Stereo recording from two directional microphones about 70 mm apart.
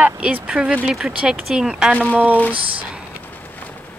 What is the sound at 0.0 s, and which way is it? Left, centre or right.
Speech, right.